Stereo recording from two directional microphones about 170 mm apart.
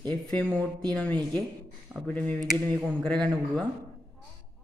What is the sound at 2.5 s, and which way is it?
Speech, 5° left (ahead or behind).